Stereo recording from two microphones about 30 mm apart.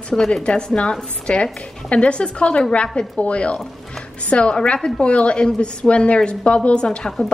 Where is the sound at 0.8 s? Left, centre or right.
Left.